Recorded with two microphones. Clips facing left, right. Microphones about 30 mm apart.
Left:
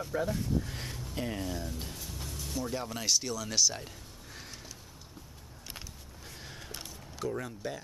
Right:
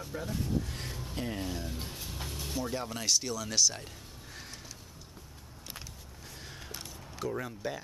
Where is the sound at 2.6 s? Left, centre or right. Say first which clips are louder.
Even; centre.